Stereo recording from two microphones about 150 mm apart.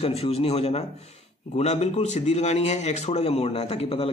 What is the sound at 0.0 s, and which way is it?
A man's voice, 45° left (ahead or behind).